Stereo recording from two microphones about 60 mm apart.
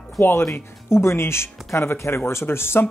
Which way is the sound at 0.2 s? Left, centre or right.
Left.